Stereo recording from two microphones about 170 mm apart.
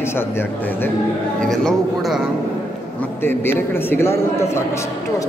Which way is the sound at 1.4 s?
Centre (ahead or behind).